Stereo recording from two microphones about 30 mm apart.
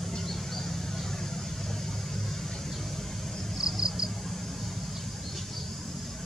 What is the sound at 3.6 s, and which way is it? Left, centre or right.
Cricket, right.